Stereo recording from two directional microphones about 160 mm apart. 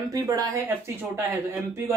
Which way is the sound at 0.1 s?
20° right (ahead or behind).